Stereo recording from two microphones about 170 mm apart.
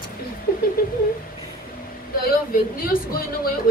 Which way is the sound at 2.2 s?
60° left (ahead or behind).